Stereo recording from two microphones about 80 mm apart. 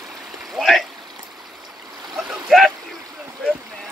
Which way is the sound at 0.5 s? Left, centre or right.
Centre.